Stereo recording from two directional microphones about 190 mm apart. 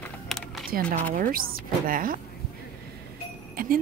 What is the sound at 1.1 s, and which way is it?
Speech, 50° right (ahead or behind).